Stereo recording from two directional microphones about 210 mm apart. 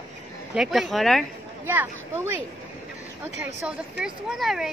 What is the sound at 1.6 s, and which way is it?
Speech, 10° right (ahead or behind).